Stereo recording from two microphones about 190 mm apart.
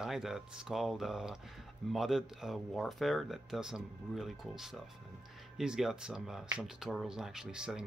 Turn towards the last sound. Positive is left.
turn(degrees=-5)  # may be behind; listen again after turning